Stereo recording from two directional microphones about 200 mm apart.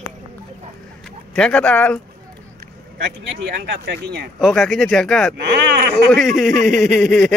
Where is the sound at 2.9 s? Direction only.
55° right (ahead or behind).